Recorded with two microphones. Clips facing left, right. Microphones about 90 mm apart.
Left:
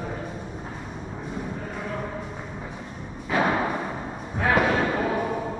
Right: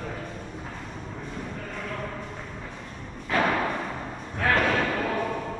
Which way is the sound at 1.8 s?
15° left (ahead or behind).